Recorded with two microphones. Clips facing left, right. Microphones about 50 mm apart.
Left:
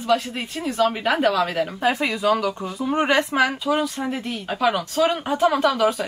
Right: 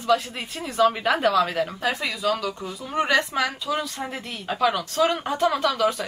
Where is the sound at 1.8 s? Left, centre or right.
Left.